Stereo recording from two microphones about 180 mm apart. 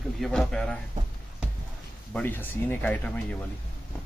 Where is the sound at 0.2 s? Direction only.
Centre (ahead or behind).